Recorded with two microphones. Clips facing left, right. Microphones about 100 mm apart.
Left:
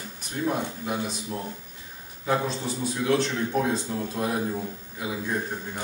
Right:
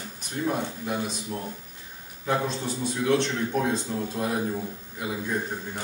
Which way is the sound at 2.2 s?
5° left (ahead or behind).